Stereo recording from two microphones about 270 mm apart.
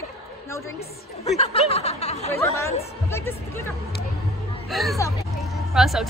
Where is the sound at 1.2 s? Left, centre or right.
Left.